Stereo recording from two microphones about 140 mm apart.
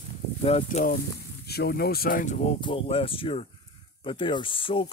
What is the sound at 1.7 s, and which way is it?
Speech, 90° left.